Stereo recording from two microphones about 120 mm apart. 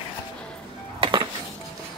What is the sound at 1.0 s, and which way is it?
Music, 40° right (ahead or behind).